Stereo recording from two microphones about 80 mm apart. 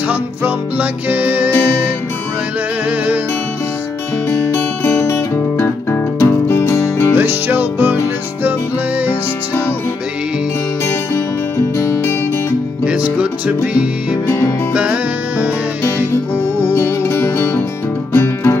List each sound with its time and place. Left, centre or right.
0.1 s music: centre
4.8 s music: left
7.2 s music: right
11.1 s music: left
12.8 s music: centre
14.2 s music: left
14.7 s music: centre
16.7 s music: left